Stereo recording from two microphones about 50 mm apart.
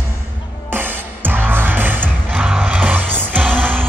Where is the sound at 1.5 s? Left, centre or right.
Right.